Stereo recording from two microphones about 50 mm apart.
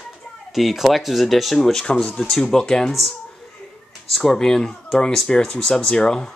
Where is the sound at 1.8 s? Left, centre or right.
Left.